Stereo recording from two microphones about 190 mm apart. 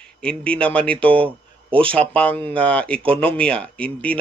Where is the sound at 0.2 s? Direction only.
5° left (ahead or behind).